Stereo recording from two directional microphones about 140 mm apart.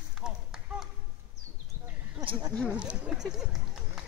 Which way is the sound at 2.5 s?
10° left (ahead or behind).